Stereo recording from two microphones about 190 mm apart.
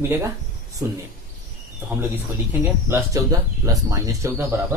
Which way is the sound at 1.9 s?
10° right (ahead or behind).